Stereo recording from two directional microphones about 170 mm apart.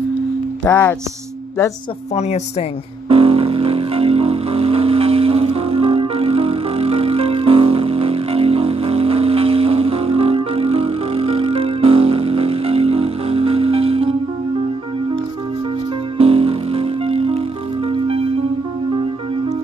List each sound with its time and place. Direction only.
0.7 s speech: 10° left (ahead or behind)
2.1 s a woman's voice: 40° left (ahead or behind)
3.1 s music: 35° right (ahead or behind)
16.2 s music: 35° right (ahead or behind)